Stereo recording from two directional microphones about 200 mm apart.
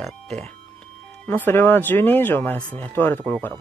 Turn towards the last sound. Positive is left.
turn(degrees=5)  # may be behind; listen again after turning